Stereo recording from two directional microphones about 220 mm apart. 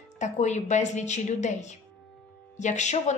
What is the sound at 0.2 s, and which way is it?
A woman's voice, 30° left (ahead or behind).